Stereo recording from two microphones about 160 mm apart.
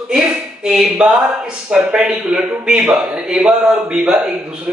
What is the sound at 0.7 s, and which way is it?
Speech, 5° right (ahead or behind).